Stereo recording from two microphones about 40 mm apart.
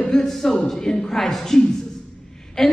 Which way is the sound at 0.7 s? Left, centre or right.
Centre.